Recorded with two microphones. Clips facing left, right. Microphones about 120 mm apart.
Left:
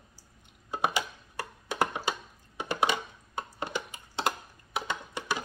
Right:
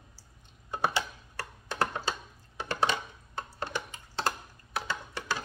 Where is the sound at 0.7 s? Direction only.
15° left (ahead or behind).